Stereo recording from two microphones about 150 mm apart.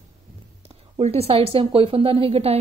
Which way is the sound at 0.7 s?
40° right (ahead or behind).